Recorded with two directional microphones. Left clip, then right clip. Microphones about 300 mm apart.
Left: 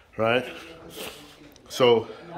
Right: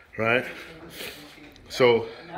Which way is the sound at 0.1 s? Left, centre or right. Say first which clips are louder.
Even; centre.